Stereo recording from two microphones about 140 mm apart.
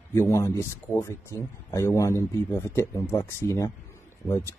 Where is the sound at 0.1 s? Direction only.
20° left (ahead or behind).